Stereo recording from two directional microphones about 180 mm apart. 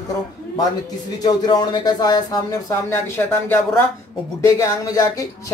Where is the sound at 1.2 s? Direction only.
25° left (ahead or behind).